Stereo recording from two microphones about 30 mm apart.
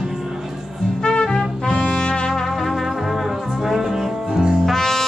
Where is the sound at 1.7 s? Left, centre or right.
Left.